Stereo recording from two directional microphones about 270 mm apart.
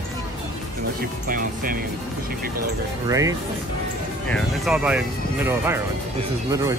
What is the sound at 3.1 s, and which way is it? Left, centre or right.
Speech, centre.